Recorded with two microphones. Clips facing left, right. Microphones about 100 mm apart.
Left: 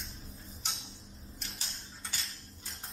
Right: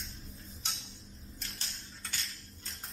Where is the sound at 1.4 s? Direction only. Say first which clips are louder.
Left 1 dB; 5° left (ahead or behind).